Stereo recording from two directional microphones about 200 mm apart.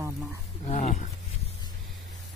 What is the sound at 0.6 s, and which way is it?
Speech, 35° left (ahead or behind).